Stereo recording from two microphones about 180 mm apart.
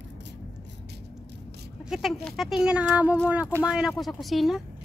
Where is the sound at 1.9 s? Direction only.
Centre (ahead or behind).